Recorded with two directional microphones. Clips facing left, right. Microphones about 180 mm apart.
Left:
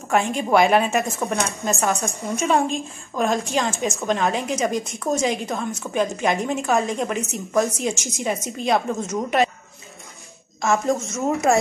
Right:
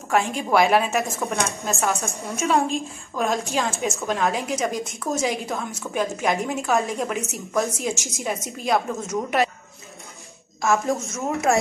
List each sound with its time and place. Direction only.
0.1 s a woman's voice: centre (ahead or behind)
10.6 s a woman's voice: centre (ahead or behind)